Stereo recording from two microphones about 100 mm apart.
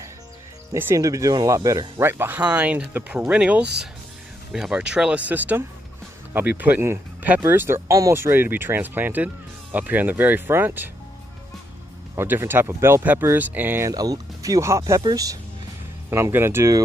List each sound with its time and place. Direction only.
0.9 s speech: 35° right (ahead or behind)
12.2 s speech: 25° right (ahead or behind)
13.8 s speech: 40° right (ahead or behind)
16.1 s speech: 25° right (ahead or behind)